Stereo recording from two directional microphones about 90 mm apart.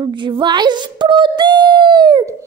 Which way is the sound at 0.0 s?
60° right (ahead or behind).